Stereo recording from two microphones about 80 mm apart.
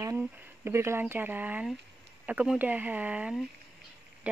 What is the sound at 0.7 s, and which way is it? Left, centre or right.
Speech, right.